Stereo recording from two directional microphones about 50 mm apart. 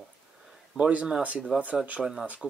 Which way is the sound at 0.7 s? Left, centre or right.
Right.